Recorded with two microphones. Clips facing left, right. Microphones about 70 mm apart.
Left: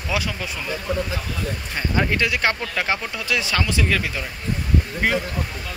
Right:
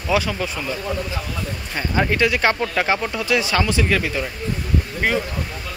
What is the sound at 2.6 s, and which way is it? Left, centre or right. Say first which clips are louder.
Speech: right 5 dB; centre.